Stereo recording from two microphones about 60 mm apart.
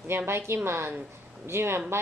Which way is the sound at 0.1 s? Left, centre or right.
Right.